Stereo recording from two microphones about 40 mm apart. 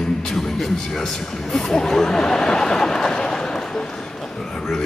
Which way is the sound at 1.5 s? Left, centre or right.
Centre.